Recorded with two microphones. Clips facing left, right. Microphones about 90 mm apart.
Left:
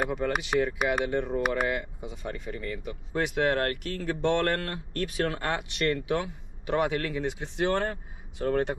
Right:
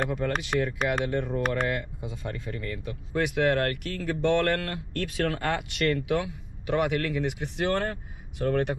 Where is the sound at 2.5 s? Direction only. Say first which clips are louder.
Even; 20° left (ahead or behind).